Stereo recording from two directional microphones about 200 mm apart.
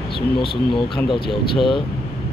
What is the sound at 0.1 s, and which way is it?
Speech, 25° left (ahead or behind).